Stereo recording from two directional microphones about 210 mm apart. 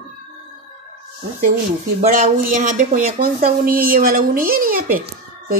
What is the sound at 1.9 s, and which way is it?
Speech, 40° right (ahead or behind).